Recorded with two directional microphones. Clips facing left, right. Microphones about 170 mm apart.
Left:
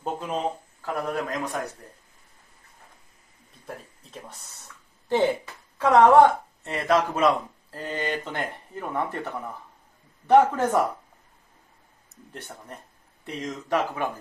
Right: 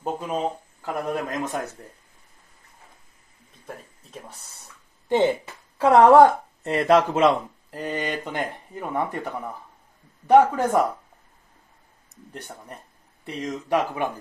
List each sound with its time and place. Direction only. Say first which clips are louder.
0.0 s speech: right 2 dB; 5° right (ahead or behind)
0.8 s speech: right 1 dB; 20° right (ahead or behind)
3.6 s speech: even; centre (ahead or behind)
5.0 s speech: right 2 dB; 20° right (ahead or behind)
5.8 s speech: right 2 dB; 30° right (ahead or behind); by 10.8 s 10° right (ahead or behind)
12.4 s speech: right 1 dB; 10° right (ahead or behind)